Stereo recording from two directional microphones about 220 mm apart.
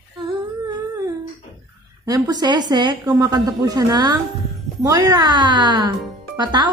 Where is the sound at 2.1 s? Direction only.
20° right (ahead or behind).